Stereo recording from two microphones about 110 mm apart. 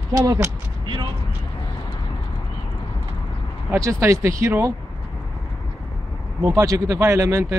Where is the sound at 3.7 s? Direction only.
25° right (ahead or behind).